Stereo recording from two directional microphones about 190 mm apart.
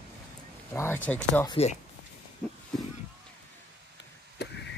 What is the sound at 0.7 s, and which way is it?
Speech, 10° left (ahead or behind).